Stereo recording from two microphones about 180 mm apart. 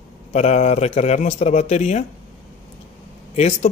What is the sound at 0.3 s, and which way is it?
Speech, 40° left (ahead or behind).